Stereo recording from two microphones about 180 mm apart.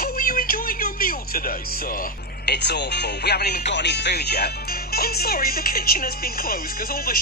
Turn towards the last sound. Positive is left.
turn(degrees=55)  # may be behind; listen again after turning